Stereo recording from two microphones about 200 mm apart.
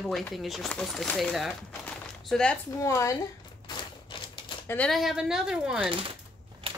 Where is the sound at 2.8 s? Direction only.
15° left (ahead or behind).